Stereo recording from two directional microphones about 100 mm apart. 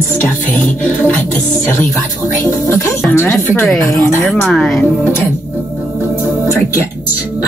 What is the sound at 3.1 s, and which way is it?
Speech, 25° left (ahead or behind).